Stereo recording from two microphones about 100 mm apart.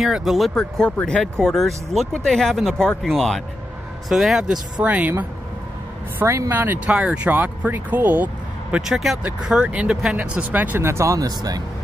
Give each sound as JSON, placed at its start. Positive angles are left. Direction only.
{"t": 0.0, "sound": "speech", "side_deg": -5}
{"t": 4.8, "sound": "speech", "side_deg": -15}
{"t": 6.1, "sound": "speech", "side_deg": -30}
{"t": 8.7, "sound": "speech", "side_deg": -5}
{"t": 9.2, "sound": "speech", "side_deg": -15}